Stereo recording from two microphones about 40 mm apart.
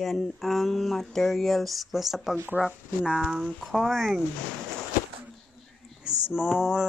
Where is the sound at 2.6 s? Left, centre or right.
Centre.